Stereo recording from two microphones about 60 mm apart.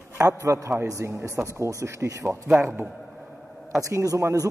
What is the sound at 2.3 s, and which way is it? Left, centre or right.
Speech, centre.